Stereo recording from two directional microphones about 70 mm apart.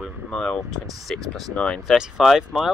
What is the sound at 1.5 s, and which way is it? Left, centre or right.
Speech, centre.